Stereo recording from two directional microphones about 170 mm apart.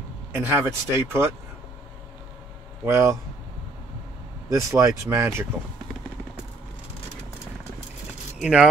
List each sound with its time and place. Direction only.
0.3 s speech: 15° right (ahead or behind)
2.8 s speech: 15° right (ahead or behind)
4.5 s speech: 15° right (ahead or behind)
8.4 s speech: 5° right (ahead or behind)